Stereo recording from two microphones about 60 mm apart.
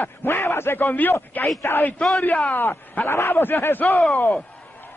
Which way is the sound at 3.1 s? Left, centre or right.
Left.